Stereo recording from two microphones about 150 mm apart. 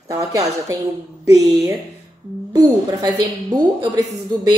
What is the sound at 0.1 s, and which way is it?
A woman's voice, 20° right (ahead or behind).